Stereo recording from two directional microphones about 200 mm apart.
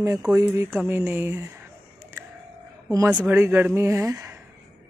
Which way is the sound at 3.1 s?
10° right (ahead or behind).